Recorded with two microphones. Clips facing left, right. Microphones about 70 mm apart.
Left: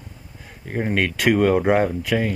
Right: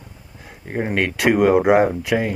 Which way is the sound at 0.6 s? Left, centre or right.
Centre.